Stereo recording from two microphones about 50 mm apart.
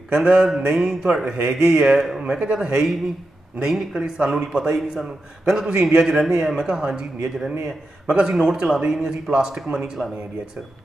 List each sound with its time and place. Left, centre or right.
0.1 s mantra: centre
0.6 s a man's voice: centre
4.7 s a man's voice: centre
5.7 s a man's voice: centre